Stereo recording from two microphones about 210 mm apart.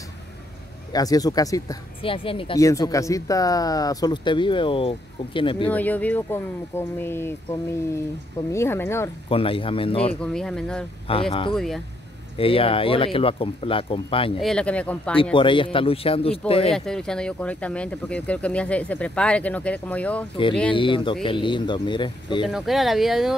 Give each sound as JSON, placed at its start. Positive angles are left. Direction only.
{"t": 0.9, "sound": "speech", "side_deg": 15}
{"t": 5.7, "sound": "speech", "side_deg": 10}
{"t": 8.5, "sound": "speech", "side_deg": 10}
{"t": 9.3, "sound": "speech", "side_deg": 25}
{"t": 10.2, "sound": "speech", "side_deg": 5}
{"t": 11.1, "sound": "speech", "side_deg": 25}
{"t": 11.5, "sound": "speech", "side_deg": 0}
{"t": 12.4, "sound": "speech", "side_deg": 25}
{"t": 14.4, "sound": "speech", "side_deg": 5}
{"t": 15.3, "sound": "speech", "side_deg": 25}
{"t": 16.7, "sound": "speech", "side_deg": 0}
{"t": 20.7, "sound": "speech", "side_deg": 25}
{"t": 22.5, "sound": "speech", "side_deg": 0}